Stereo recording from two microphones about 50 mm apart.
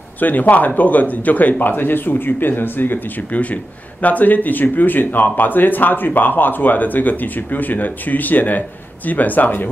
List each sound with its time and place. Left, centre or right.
0.2 s speech: left
3.3 s speech: left